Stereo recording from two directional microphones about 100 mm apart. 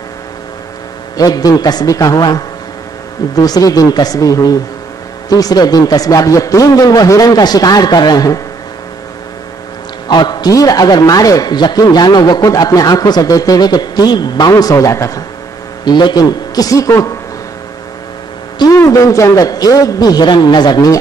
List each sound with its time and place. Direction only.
1.1 s a man's voice: 40° left (ahead or behind)
10.0 s a man's voice: 45° left (ahead or behind)
15.8 s a man's voice: 45° left (ahead or behind)
18.7 s a man's voice: 35° left (ahead or behind)